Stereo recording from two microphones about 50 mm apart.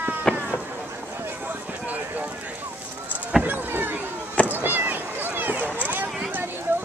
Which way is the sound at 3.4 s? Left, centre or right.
Right.